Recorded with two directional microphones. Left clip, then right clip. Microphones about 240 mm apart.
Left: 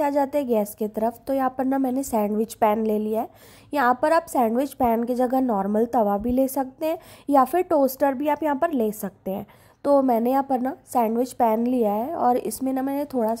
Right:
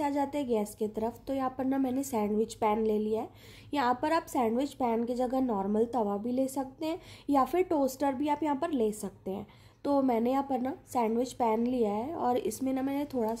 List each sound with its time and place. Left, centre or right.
0.0 s a woman's voice: left